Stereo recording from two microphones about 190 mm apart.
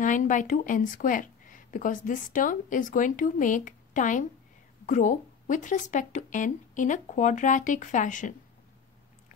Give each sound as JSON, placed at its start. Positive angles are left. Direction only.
{"t": 0.0, "sound": "speech", "side_deg": 40}